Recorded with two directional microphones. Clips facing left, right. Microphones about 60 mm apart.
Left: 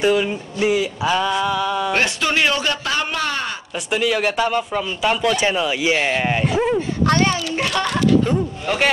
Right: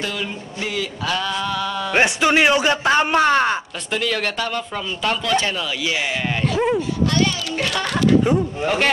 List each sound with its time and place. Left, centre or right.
0.0 s a sound: left
2.0 s a man's voice: right
3.9 s a sound: centre
5.4 s speech: left
7.1 s speech: left
7.5 s speech: centre
8.2 s speech: centre